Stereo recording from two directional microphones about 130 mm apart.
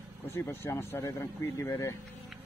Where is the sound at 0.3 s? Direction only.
20° left (ahead or behind).